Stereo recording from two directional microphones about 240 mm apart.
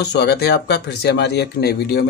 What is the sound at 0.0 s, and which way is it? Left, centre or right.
Speech, left.